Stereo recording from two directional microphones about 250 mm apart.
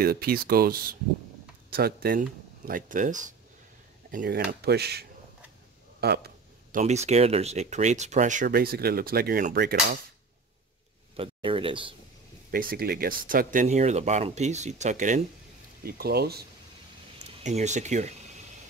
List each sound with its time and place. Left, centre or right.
0.0 s speech: right
5.9 s a sound: right
6.8 s speech: right
11.1 s speech: right
12.4 s speech: right
17.4 s speech: right